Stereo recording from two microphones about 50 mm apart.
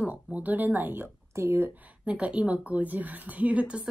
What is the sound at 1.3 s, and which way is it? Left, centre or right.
Speech, right.